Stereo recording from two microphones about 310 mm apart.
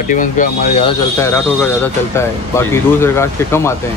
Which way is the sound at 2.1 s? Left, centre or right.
Centre.